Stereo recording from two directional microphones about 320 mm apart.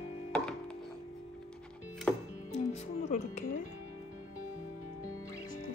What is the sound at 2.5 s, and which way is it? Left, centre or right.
Music, centre.